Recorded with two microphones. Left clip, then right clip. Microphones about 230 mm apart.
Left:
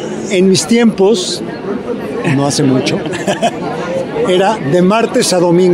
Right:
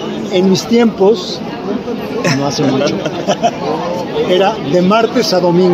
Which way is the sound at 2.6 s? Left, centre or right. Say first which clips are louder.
Even; left.